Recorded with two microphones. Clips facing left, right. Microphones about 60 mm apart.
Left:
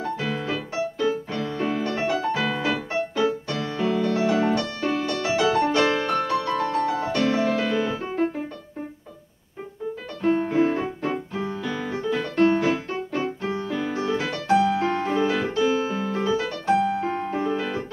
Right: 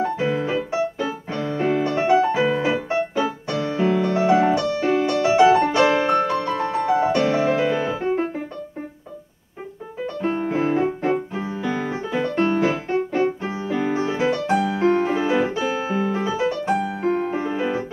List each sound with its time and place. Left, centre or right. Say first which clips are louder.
0.0 s music: right 6 dB; right
10.2 s music: left 2 dB; right
15.0 s piano: right 3 dB; centre